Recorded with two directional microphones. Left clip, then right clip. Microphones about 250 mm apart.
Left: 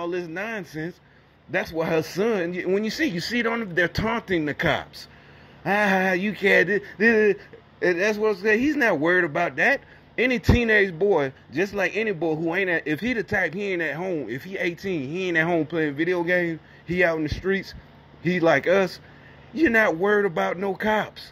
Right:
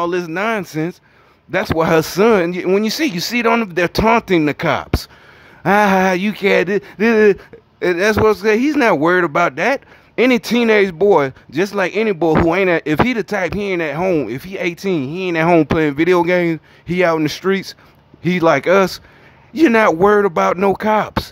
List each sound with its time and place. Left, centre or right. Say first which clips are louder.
0.0 s a man's voice: right 11 dB; centre